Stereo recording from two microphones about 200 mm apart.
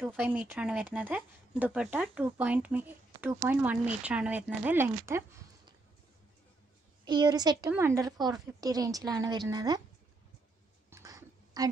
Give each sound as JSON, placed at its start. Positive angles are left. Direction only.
{"t": 0.0, "sound": "speech", "side_deg": -10}
{"t": 7.1, "sound": "a woman's voice", "side_deg": -20}
{"t": 10.9, "sound": "a sound", "side_deg": -15}